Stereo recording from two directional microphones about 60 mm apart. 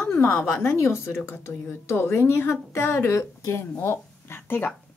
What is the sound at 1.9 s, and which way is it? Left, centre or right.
A woman's voice, left.